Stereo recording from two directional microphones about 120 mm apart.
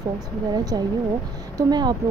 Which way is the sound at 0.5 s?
35° right (ahead or behind).